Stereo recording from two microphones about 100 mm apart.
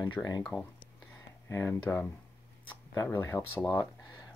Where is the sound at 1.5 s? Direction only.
25° left (ahead or behind).